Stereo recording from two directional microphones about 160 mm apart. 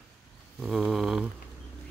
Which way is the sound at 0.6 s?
Centre (ahead or behind).